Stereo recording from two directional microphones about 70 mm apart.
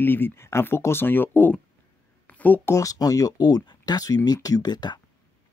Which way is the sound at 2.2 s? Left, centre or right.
Left.